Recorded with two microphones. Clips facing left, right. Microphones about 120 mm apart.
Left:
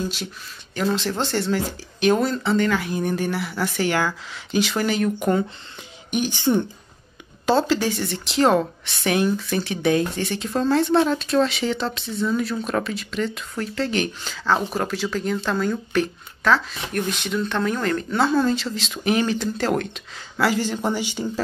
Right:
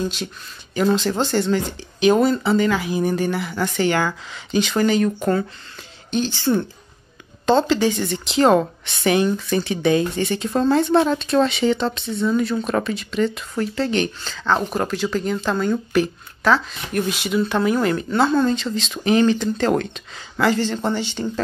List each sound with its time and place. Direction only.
0.7 s a woman's voice: centre (ahead or behind)
5.2 s speech: 15° left (ahead or behind)
7.4 s a woman's voice: 5° left (ahead or behind)